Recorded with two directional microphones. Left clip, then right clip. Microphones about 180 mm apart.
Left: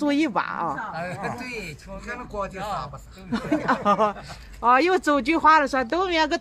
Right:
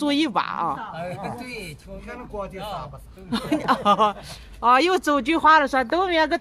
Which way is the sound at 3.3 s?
Centre (ahead or behind).